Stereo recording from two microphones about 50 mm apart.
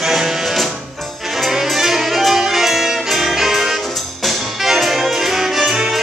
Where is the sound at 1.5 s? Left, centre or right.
Centre.